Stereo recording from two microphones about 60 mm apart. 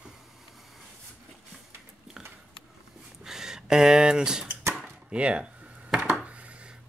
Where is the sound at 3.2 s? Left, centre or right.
Centre.